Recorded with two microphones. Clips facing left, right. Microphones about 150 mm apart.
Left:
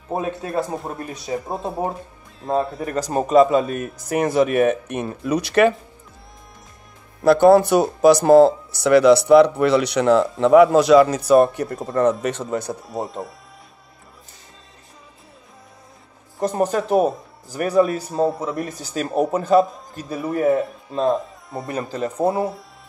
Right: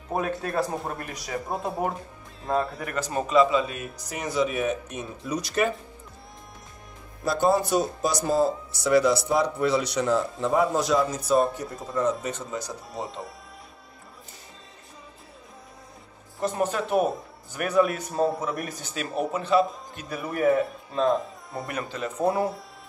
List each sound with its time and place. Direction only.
0.1 s speech: 25° left (ahead or behind)
2.8 s a man's voice: 35° left (ahead or behind); by 5.8 s 75° left (ahead or behind)
7.2 s speech: 70° left (ahead or behind)
16.3 s a man's voice: 40° left (ahead or behind); by 18.9 s 25° left (ahead or behind)
18.9 s speech: 40° left (ahead or behind)
19.6 s a man's voice: centre (ahead or behind)
20.0 s speech: 30° left (ahead or behind)
21.1 s speech: centre (ahead or behind)
21.8 s a man's voice: 35° left (ahead or behind)